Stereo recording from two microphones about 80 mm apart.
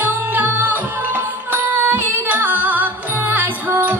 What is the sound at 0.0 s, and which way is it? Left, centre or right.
Music, right.